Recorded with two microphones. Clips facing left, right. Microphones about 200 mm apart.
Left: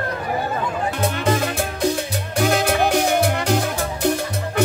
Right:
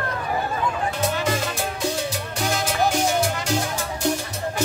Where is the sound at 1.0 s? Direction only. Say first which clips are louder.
Left 5 dB; 55° left (ahead or behind).